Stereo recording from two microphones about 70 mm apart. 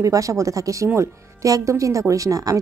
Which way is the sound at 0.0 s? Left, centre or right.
Right.